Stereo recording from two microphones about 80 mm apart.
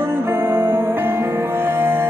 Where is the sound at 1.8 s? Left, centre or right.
Right.